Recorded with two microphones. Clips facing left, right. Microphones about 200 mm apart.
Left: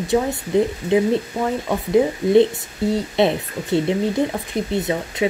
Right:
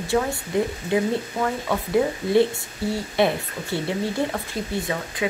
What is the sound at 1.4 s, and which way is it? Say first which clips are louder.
Speech: left 3 dB; 20° left (ahead or behind).